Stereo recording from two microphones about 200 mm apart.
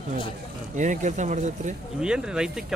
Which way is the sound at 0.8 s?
40° right (ahead or behind).